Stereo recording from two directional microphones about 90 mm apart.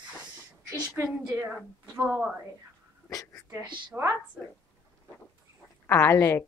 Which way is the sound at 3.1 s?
40° left (ahead or behind).